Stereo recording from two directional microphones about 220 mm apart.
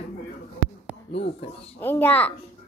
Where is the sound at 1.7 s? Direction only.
10° left (ahead or behind).